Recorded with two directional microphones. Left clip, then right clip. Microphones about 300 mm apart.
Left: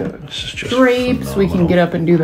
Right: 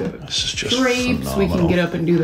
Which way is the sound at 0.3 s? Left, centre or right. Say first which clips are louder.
Right 2 dB; centre.